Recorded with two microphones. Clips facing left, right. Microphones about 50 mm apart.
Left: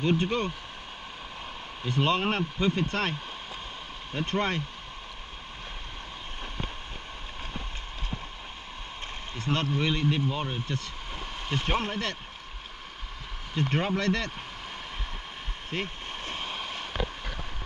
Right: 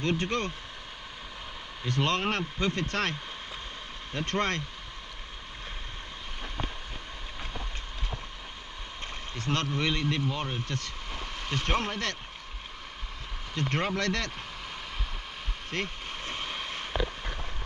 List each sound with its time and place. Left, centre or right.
0.0 s speech: centre
1.9 s speech: centre
9.5 s speech: centre
13.6 s speech: centre
15.7 s vehicle: centre